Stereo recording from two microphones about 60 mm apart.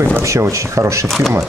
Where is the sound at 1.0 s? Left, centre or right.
Centre.